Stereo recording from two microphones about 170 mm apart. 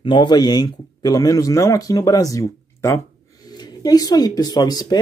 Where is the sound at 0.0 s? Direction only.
30° left (ahead or behind).